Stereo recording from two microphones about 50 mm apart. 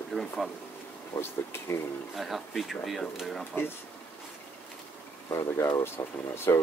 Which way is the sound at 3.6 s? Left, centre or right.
Left.